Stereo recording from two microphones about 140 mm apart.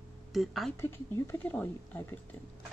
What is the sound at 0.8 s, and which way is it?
Speech, 20° left (ahead or behind).